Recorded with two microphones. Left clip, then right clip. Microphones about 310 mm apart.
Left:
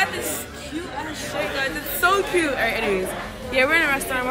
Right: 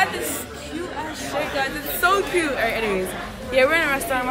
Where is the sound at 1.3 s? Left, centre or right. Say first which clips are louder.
Right 1 dB; centre.